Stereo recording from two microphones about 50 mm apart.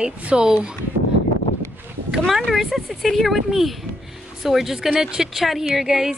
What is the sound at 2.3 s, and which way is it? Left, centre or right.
Speech, centre.